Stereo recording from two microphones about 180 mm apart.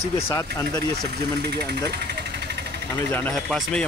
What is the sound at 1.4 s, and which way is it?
Vehicle, 65° right (ahead or behind).